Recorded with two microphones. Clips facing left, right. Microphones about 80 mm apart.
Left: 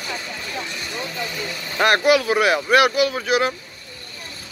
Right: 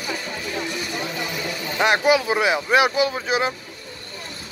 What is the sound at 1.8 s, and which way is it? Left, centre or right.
Speech, centre.